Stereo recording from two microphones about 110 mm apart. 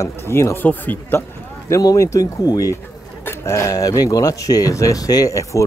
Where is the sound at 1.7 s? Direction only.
30° left (ahead or behind).